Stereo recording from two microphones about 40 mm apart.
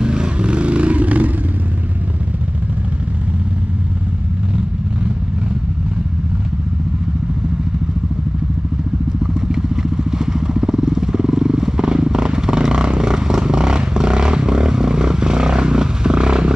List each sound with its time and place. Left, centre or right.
0.0 s vehicle: right
9.2 s vehicle: centre